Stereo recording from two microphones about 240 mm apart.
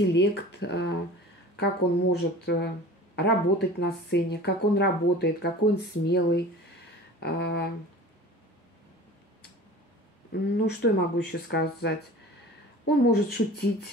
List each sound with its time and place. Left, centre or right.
0.1 s speech: left
10.3 s speech: left